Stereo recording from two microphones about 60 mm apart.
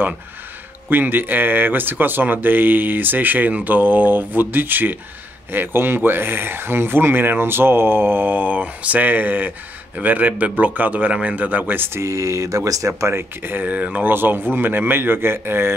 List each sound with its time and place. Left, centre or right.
0.8 s speech: right
12.0 s speech: right
13.1 s speech: right